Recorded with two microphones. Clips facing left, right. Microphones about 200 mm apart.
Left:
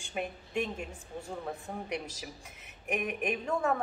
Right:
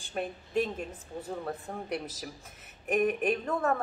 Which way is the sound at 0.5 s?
35° right (ahead or behind).